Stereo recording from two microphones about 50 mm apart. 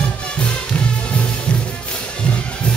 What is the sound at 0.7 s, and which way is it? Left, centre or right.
Music, left.